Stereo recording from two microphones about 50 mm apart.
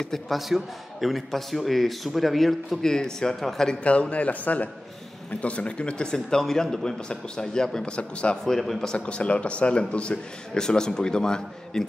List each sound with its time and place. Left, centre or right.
0.0 s a man's voice: centre
0.4 s speech: centre
3.8 s a man's voice: left
8.5 s a man's voice: centre
8.9 s a man's voice: left